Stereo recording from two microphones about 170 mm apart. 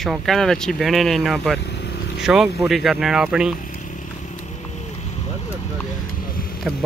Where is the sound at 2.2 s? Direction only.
Centre (ahead or behind).